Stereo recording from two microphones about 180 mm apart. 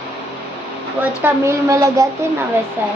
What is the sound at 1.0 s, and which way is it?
A woman's voice, 15° right (ahead or behind).